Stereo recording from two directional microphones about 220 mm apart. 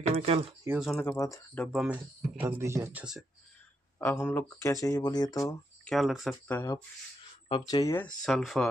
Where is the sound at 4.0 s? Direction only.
10° left (ahead or behind).